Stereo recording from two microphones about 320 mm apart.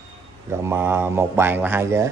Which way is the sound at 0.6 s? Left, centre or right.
Centre.